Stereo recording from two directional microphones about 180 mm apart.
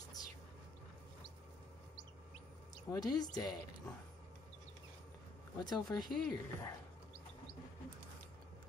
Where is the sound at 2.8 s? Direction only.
20° left (ahead or behind).